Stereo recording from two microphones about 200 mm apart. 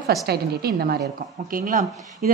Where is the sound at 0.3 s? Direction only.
50° right (ahead or behind).